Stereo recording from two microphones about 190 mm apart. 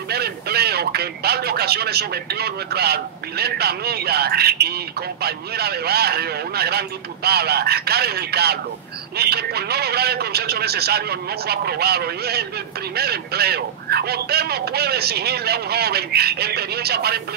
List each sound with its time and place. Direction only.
0.1 s speech: 55° right (ahead or behind)